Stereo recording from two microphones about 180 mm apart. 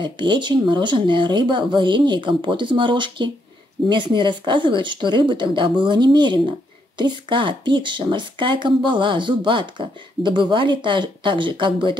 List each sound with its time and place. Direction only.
0.0 s speech: 25° right (ahead or behind)